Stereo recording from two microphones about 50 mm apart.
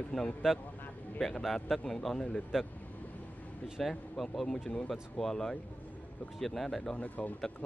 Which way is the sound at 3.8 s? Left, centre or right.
Centre.